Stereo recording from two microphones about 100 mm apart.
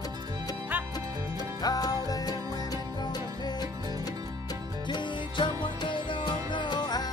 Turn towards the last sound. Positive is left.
turn(degrees=45)  # may be behind; listen again after turning